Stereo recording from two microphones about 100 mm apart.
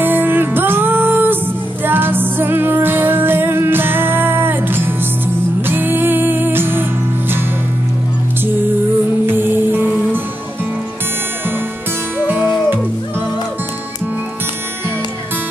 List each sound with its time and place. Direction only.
0.0 s music: 20° right (ahead or behind)
9.2 s music: 20° right (ahead or behind)
12.2 s music: 20° right (ahead or behind)